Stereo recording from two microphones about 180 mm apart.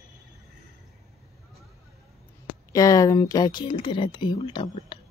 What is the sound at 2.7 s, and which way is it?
Speech, 20° left (ahead or behind).